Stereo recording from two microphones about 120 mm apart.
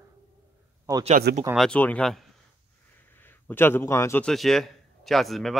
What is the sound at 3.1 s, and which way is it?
A man's voice, 15° left (ahead or behind).